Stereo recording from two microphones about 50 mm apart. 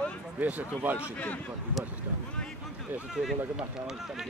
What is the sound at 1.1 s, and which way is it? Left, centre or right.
Speech, left.